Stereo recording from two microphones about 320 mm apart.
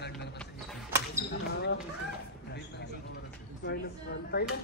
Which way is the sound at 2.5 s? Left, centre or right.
Left.